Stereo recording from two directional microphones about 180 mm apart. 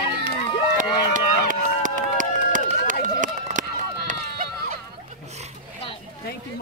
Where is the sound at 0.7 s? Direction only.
45° right (ahead or behind).